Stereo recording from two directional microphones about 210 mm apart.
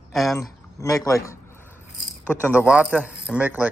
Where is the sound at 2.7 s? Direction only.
5° right (ahead or behind).